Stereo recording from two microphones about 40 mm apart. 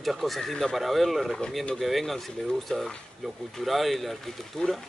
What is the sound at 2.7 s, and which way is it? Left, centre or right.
Speech, centre.